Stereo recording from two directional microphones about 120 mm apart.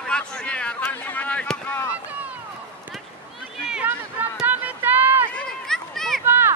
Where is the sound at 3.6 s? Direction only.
10° right (ahead or behind).